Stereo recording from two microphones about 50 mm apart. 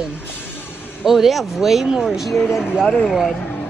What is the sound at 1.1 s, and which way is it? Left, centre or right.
Speech, centre.